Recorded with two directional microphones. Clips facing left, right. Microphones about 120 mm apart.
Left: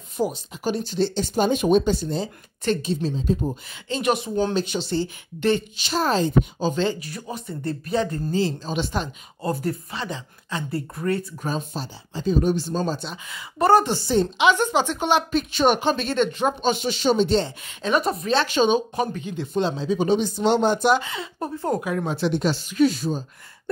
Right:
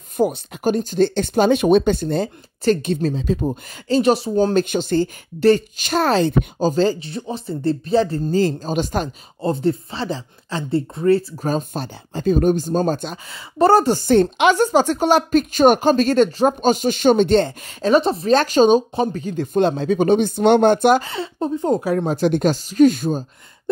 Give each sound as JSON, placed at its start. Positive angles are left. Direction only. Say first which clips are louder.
{"t": 0.2, "sound": "speech", "louder": "right 6 dB", "side_deg": -60}
{"t": 3.7, "sound": "speech", "louder": "right 8 dB", "side_deg": -35}
{"t": 4.6, "sound": "speech", "louder": "right 6 dB", "side_deg": -50}
{"t": 6.0, "sound": "speech", "louder": "right 4 dB", "side_deg": -75}
{"t": 6.6, "sound": "speech", "louder": "right 6 dB", "side_deg": -40}
{"t": 8.4, "sound": "speech", "louder": "right 5 dB", "side_deg": -45}
{"t": 9.4, "sound": "speech", "louder": "right 6 dB", "side_deg": -25}
{"t": 11.4, "sound": "speech", "louder": "right 6 dB", "side_deg": -50}
{"t": 13.3, "sound": "speech", "louder": "right 3 dB", "side_deg": -30}
{"t": 13.9, "sound": "speech", "louder": "right 6 dB", "side_deg": -55}
{"t": 17.6, "sound": "speech", "louder": "right 6 dB", "side_deg": -35}
{"t": 18.3, "sound": "speech", "louder": "right 6 dB", "side_deg": -45}
{"t": 21.0, "sound": "speech", "louder": "right 6 dB", "side_deg": -30}
{"t": 21.8, "sound": "speech", "louder": "right 6 dB", "side_deg": -40}